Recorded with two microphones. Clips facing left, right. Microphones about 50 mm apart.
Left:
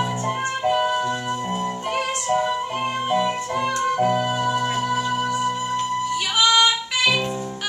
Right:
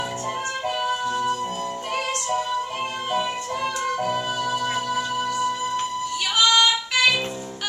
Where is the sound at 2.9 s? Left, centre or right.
Centre.